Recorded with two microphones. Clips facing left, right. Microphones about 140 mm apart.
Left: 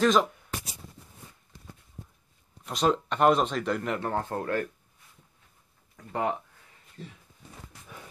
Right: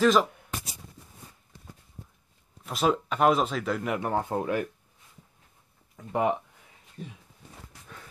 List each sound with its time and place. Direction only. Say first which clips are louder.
0.0 s speech: right 1 dB; centre (ahead or behind)
2.6 s speech: even; 5° right (ahead or behind)
5.9 s speech: right 3 dB; 15° right (ahead or behind)